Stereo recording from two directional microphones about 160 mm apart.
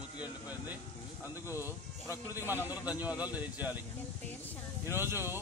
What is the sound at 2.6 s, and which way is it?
Speech, 10° right (ahead or behind).